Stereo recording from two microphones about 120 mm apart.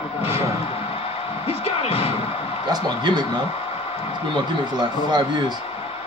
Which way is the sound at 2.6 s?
35° right (ahead or behind).